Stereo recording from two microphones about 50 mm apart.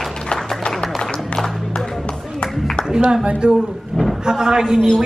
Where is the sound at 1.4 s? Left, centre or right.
Centre.